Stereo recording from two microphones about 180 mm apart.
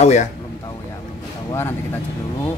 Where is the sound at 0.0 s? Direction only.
40° left (ahead or behind).